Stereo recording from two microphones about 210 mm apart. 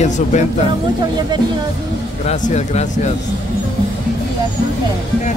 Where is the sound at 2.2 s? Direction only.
30° left (ahead or behind).